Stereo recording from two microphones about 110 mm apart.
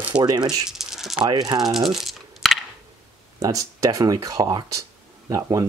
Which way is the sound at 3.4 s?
30° right (ahead or behind).